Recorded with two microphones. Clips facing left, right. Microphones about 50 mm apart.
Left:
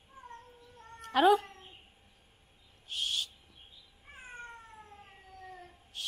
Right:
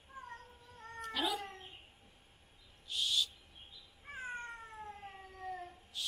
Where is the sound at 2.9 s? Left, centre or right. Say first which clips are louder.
Even; left.